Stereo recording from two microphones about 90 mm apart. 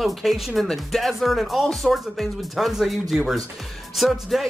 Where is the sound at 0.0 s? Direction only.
Centre (ahead or behind).